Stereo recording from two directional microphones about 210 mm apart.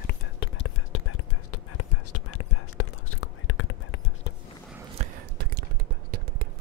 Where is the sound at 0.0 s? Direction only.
55° left (ahead or behind); by 4.1 s 75° left (ahead or behind).